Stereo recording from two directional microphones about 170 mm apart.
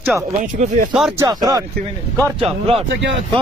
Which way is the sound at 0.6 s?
45° right (ahead or behind).